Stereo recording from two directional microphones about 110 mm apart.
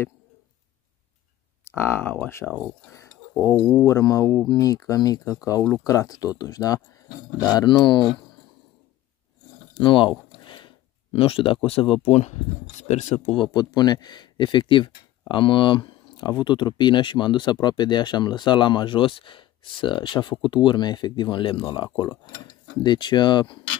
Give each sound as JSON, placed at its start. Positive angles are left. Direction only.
{"t": 1.6, "sound": "speech", "side_deg": 20}
{"t": 2.9, "sound": "a sound", "side_deg": 25}
{"t": 3.8, "sound": "speech", "side_deg": 30}
{"t": 9.8, "sound": "speech", "side_deg": 50}
{"t": 10.3, "sound": "a sound", "side_deg": 45}
{"t": 11.1, "sound": "speech", "side_deg": 55}
{"t": 12.1, "sound": "speech", "side_deg": 90}
{"t": 13.4, "sound": "speech", "side_deg": 40}